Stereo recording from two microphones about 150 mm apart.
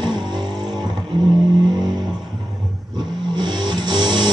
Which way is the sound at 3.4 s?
30° right (ahead or behind).